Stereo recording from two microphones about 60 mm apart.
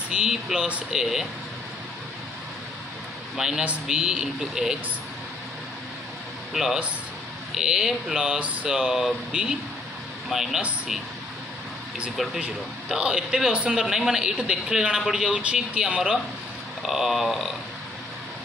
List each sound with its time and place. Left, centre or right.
0.1 s a man's voice: centre
3.3 s a man's voice: centre
6.5 s a man's voice: centre
12.4 s a man's voice: centre